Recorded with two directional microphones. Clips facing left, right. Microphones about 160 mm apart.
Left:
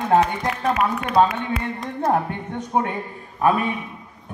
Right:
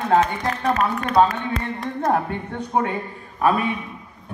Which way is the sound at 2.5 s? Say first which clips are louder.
Even; 20° left (ahead or behind).